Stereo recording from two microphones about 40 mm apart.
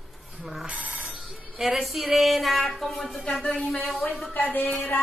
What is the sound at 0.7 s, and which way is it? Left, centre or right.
Telephone bell ringing, right.